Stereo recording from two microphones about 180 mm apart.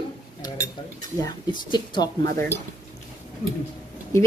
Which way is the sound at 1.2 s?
25° left (ahead or behind).